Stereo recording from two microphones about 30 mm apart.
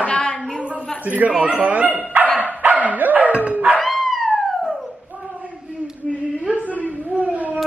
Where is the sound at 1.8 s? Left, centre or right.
Right.